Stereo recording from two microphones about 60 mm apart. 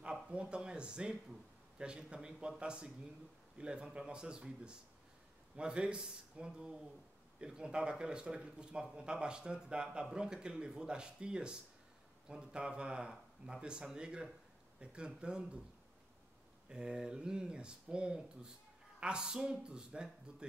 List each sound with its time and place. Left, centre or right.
0.3 s speech: centre
16.6 s speech: centre